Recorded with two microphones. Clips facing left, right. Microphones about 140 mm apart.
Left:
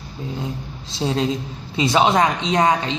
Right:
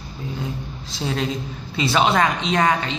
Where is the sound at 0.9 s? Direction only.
25° left (ahead or behind).